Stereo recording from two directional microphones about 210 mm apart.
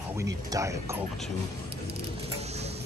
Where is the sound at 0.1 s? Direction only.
15° right (ahead or behind).